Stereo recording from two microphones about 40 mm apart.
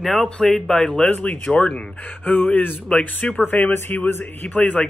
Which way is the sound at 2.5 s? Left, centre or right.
Left.